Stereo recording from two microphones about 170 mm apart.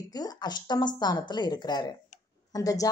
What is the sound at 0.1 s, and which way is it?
Speech, 25° left (ahead or behind).